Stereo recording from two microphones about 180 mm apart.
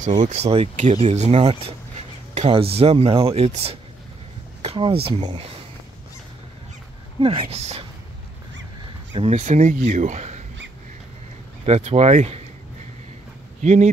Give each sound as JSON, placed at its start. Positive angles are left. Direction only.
{"t": 0.0, "sound": "speech", "side_deg": -45}
{"t": 4.6, "sound": "a sound", "side_deg": -30}
{"t": 5.0, "sound": "speech", "side_deg": -30}
{"t": 7.2, "sound": "speech", "side_deg": -30}
{"t": 9.1, "sound": "speech", "side_deg": -35}
{"t": 11.6, "sound": "speech", "side_deg": -35}
{"t": 13.6, "sound": "speech", "side_deg": -40}